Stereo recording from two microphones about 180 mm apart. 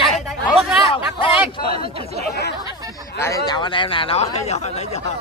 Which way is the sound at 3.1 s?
15° left (ahead or behind).